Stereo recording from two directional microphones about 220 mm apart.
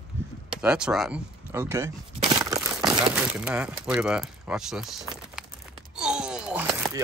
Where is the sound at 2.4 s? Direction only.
15° right (ahead or behind).